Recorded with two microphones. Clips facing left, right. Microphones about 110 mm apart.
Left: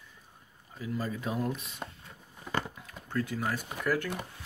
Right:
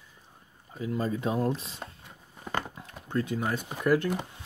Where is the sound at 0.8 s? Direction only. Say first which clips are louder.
Right 4 dB; 25° right (ahead or behind).